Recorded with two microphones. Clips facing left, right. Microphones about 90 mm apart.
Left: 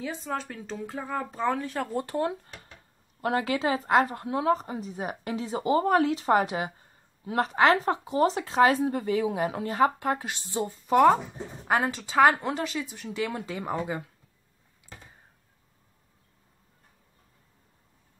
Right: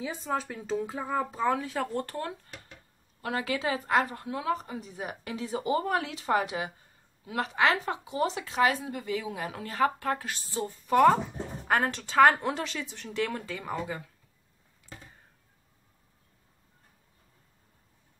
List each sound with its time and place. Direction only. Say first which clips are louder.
0.0 s speech: right 1 dB; 5° right (ahead or behind)
1.9 s a woman's voice: left 2 dB; 10° left (ahead or behind)
2.1 s speech: left 7 dB; 20° left (ahead or behind)
3.2 s a woman's voice: left 5 dB; 30° left (ahead or behind); by 13.4 s 10° left (ahead or behind)
13.5 s speech: left 3 dB; 25° left (ahead or behind)